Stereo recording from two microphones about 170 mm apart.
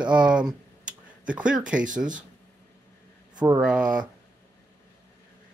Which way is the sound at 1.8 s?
50° right (ahead or behind).